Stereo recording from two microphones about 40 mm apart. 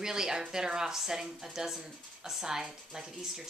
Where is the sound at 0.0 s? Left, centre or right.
Centre.